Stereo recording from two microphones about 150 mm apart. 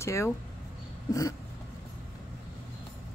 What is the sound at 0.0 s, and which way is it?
Speech, 20° left (ahead or behind).